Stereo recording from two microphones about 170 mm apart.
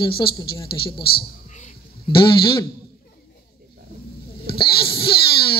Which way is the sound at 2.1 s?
30° left (ahead or behind).